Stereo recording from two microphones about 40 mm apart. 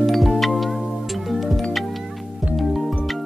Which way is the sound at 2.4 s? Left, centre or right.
Right.